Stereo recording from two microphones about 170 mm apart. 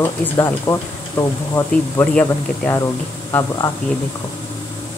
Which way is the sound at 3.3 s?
20° left (ahead or behind).